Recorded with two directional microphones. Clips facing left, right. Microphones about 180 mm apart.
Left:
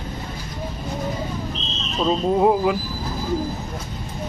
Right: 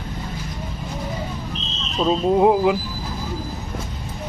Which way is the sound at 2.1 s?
10° right (ahead or behind).